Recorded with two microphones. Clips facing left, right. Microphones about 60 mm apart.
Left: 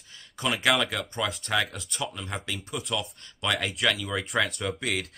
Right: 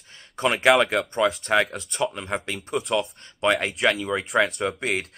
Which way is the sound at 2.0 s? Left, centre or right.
Right.